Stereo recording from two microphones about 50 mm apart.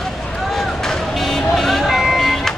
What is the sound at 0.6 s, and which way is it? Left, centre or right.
Vehicle, centre.